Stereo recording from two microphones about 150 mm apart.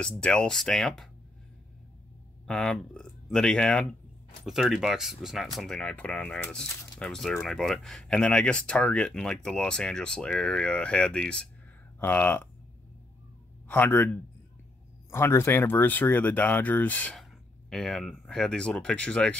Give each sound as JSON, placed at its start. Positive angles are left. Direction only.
{"t": 0.0, "sound": "speech", "side_deg": 5}
{"t": 2.4, "sound": "speech", "side_deg": 5}
{"t": 13.7, "sound": "speech", "side_deg": 15}